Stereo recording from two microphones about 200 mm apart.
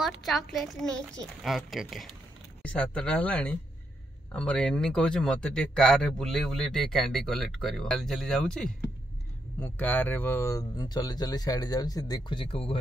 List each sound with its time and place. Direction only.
0.0 s speech: centre (ahead or behind); by 12.5 s 25° left (ahead or behind)